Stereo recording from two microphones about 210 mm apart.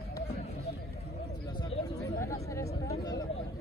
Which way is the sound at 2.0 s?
15° left (ahead or behind).